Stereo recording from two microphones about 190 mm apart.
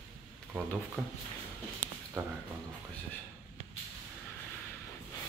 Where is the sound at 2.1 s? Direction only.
15° right (ahead or behind).